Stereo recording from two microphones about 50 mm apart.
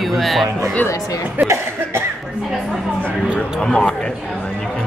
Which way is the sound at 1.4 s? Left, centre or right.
Right.